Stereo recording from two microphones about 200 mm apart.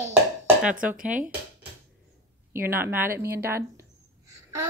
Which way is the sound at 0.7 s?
40° right (ahead or behind).